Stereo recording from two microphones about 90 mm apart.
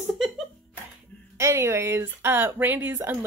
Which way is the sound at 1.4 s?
30° right (ahead or behind).